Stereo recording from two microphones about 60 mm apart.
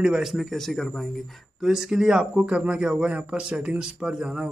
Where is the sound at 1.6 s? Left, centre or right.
Centre.